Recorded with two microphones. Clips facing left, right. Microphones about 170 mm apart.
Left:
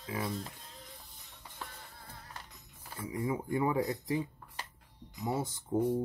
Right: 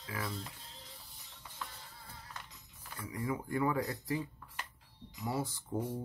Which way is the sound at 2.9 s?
20° left (ahead or behind).